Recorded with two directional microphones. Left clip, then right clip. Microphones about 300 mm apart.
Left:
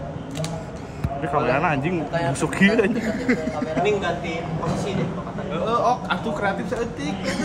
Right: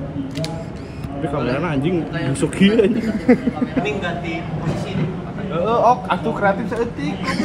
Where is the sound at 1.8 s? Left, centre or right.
Left.